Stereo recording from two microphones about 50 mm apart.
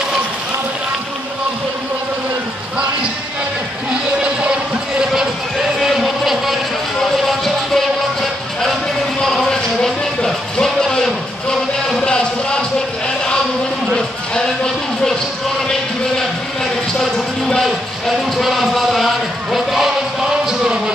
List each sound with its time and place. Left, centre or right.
5.8 s music: centre
12.0 s music: centre
17.6 s music: centre